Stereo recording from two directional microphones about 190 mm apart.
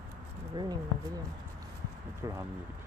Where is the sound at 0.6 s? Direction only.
20° right (ahead or behind).